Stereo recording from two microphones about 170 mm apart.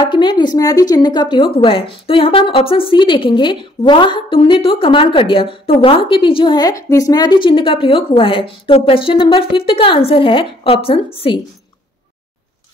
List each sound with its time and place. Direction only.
0.1 s a woman's voice: 25° left (ahead or behind)